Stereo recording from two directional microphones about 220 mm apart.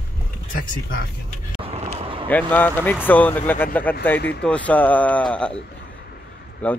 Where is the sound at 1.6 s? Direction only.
25° right (ahead or behind).